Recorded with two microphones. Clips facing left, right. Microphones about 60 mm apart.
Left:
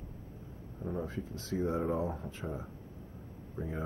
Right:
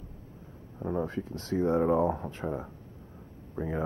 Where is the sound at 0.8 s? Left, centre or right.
Right.